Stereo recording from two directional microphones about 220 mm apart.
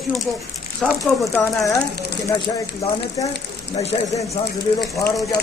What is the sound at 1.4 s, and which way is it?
Speech, 15° left (ahead or behind).